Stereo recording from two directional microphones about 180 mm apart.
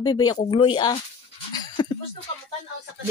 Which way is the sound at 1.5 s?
25° left (ahead or behind).